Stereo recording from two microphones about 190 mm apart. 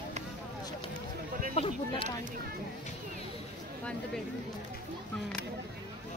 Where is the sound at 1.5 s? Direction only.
30° left (ahead or behind).